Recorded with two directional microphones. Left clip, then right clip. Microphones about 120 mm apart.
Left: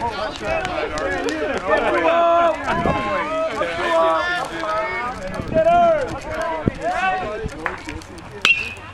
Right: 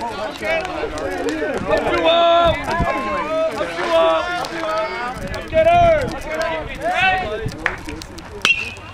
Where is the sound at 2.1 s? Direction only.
25° right (ahead or behind).